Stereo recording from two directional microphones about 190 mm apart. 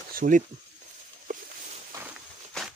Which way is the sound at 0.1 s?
45° right (ahead or behind).